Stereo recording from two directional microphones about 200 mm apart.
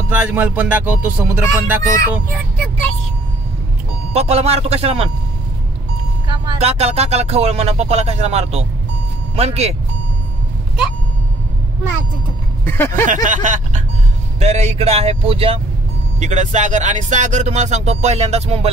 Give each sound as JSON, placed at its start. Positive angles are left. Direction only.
{"t": 0.2, "sound": "music", "side_deg": -10}
{"t": 4.1, "sound": "speech", "side_deg": -30}
{"t": 6.2, "sound": "speech", "side_deg": -20}
{"t": 12.6, "sound": "speech", "side_deg": 10}
{"t": 13.0, "sound": "speech", "side_deg": -40}